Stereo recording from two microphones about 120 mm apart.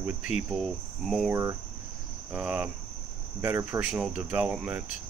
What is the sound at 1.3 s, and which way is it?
Cricket, 25° right (ahead or behind).